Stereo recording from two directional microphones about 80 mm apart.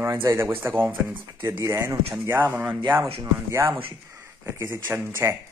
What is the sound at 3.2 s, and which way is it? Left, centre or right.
Speech, right.